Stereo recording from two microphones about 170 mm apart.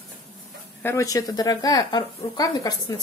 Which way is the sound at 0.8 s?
20° left (ahead or behind).